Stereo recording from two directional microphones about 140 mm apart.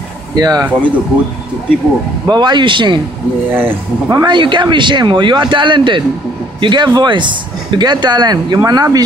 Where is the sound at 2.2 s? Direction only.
30° right (ahead or behind).